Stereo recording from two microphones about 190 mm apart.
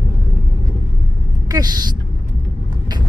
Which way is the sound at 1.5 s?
20° right (ahead or behind).